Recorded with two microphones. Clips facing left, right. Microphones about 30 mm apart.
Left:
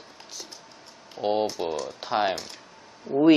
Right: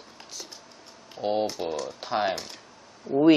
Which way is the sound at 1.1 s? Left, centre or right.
Centre.